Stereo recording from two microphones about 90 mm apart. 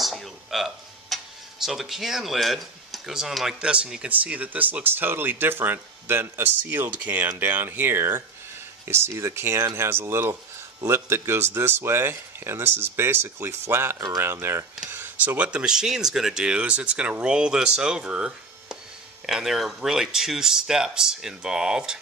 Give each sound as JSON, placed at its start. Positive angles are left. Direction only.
{"t": 0.0, "sound": "speech", "side_deg": 0}